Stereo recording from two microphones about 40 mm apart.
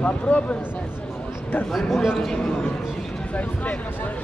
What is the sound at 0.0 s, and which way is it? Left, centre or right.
Speech, left.